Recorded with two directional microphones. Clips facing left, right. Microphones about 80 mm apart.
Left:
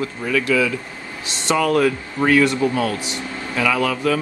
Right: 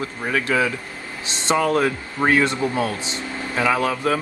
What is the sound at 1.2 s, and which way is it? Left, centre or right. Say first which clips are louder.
Speech: left 1 dB; right.